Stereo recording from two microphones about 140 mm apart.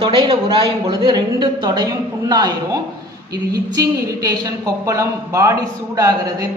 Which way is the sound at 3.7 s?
25° right (ahead or behind).